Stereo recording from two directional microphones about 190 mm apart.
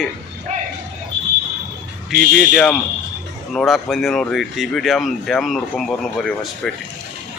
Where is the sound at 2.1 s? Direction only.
50° right (ahead or behind).